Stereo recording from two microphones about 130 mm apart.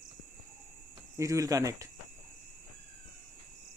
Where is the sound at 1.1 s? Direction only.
25° right (ahead or behind).